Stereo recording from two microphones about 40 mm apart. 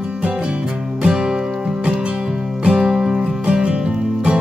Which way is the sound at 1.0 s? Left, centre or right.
Centre.